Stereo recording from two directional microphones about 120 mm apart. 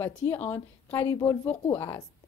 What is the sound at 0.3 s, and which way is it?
A woman's voice, 15° left (ahead or behind).